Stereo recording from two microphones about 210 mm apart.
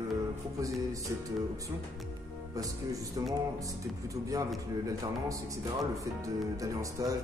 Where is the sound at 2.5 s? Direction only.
15° right (ahead or behind).